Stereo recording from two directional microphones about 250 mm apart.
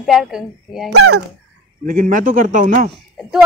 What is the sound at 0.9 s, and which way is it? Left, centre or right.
Speech, right.